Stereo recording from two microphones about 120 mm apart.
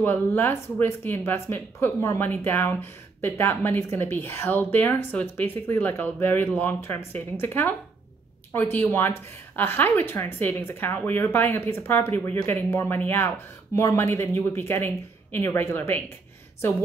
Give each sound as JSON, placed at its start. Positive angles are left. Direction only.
{"t": 0.0, "sound": "speech", "side_deg": 15}